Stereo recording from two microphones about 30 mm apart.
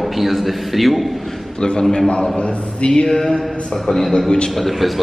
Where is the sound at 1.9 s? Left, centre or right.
Left.